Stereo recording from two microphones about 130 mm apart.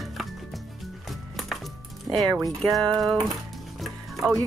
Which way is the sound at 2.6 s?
5° left (ahead or behind).